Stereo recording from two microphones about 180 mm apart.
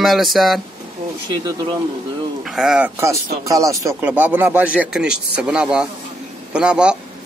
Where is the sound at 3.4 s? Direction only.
15° right (ahead or behind).